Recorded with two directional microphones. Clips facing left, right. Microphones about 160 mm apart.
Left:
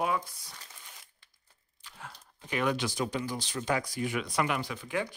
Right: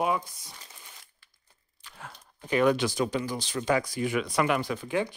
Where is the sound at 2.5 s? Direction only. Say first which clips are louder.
Right 7 dB; 40° right (ahead or behind).